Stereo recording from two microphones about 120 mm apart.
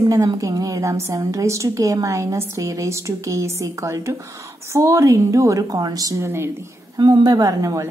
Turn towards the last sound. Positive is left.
turn(degrees=-25)  # may be behind; listen again after turning